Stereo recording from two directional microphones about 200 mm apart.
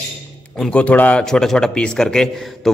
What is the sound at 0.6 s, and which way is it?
Speech, 5° left (ahead or behind).